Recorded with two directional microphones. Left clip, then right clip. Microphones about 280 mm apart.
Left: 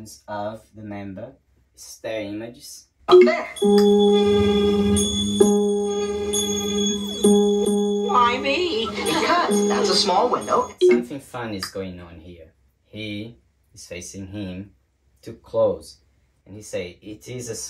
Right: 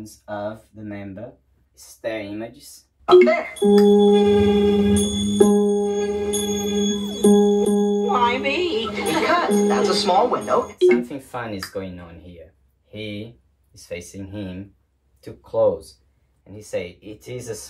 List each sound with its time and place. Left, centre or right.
0.0 s speech: centre
3.1 s music: centre
12.9 s speech: centre